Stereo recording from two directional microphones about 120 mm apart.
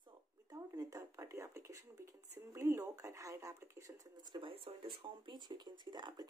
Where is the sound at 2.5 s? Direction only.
25° right (ahead or behind).